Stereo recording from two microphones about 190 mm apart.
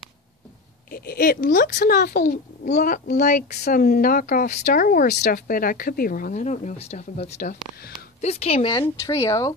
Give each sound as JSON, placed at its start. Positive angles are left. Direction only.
{"t": 0.8, "sound": "speech", "side_deg": 50}
{"t": 8.8, "sound": "speech", "side_deg": 15}